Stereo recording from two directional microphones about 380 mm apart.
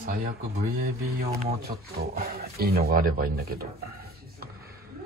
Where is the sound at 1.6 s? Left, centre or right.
Right.